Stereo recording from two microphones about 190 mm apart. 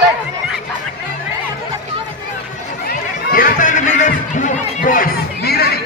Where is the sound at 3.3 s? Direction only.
45° left (ahead or behind).